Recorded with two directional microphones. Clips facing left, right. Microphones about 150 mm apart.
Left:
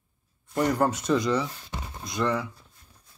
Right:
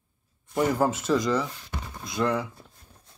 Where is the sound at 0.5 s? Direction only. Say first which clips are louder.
Even; 5° right (ahead or behind).